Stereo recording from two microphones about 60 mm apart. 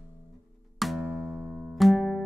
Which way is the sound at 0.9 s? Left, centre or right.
Centre.